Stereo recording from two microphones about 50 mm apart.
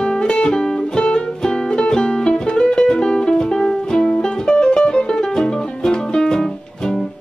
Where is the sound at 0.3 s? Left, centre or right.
Centre.